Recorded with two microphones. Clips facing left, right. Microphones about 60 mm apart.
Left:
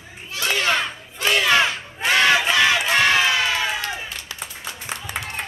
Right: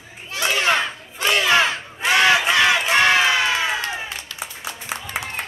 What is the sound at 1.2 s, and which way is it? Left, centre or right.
Battle cry, centre.